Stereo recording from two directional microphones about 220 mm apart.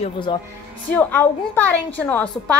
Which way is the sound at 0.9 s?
10° left (ahead or behind).